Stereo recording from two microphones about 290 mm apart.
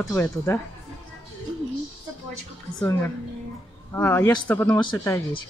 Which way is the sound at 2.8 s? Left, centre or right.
Centre.